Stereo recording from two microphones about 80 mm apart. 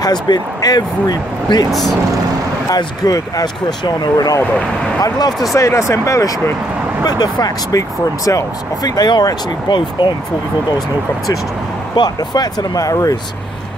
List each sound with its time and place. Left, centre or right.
0.0 s speech: left
1.7 s speech: centre
2.7 s speech: left
4.4 s speech: centre
5.0 s speech: left
7.1 s speech: left
11.9 s speech: left